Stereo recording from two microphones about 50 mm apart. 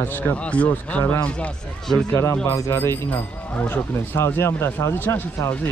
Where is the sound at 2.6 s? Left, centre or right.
Left.